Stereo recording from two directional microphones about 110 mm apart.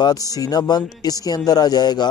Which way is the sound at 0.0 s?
35° left (ahead or behind).